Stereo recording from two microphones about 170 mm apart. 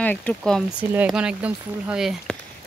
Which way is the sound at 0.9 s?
5° right (ahead or behind).